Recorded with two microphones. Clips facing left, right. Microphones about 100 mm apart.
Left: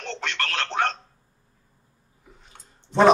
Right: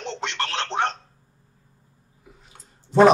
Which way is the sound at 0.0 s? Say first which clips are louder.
Right 1 dB; 25° right (ahead or behind).